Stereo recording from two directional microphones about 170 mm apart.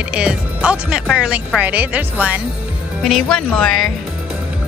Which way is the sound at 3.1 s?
5° left (ahead or behind).